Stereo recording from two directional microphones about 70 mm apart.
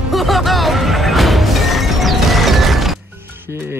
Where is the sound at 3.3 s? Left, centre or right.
Right.